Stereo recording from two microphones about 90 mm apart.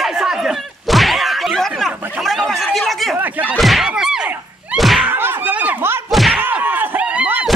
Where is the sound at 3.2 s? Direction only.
20° right (ahead or behind).